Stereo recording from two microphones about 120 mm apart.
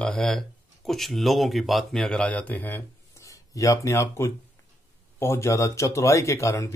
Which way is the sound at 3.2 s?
25° left (ahead or behind).